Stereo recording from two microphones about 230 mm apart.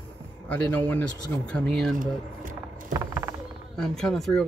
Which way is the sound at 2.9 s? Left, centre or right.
Centre.